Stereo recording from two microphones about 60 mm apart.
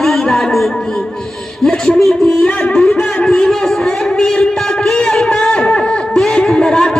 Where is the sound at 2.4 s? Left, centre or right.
Centre.